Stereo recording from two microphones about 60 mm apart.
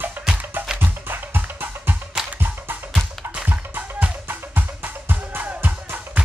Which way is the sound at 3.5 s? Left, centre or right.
Right.